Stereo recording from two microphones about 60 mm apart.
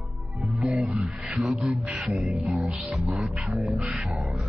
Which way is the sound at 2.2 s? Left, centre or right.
Centre.